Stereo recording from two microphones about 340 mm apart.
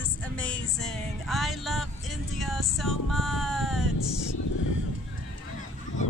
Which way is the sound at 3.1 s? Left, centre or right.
Centre.